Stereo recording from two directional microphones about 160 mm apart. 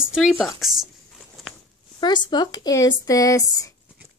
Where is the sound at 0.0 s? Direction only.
Centre (ahead or behind).